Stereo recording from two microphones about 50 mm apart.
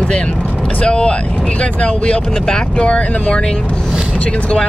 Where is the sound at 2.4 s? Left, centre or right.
Centre.